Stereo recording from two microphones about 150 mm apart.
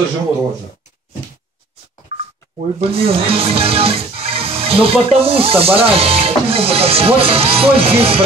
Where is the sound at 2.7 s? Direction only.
40° right (ahead or behind).